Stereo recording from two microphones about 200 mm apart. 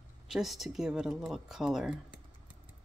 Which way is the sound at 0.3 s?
Centre (ahead or behind).